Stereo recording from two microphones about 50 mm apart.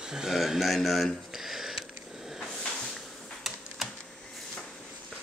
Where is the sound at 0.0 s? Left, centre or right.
Centre.